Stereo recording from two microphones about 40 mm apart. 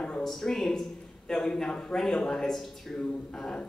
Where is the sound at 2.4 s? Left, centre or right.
Centre.